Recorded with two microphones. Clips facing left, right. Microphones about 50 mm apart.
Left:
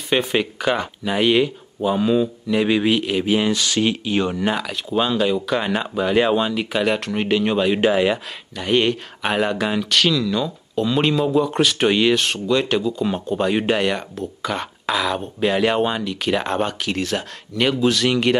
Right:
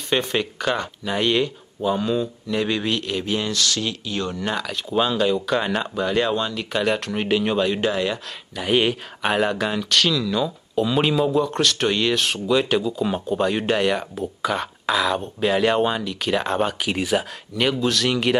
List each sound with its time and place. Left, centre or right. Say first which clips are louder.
0.1 s speech: left 3 dB; centre
7.7 s speech: left 5 dB; left
8.5 s speech: left 1 dB; centre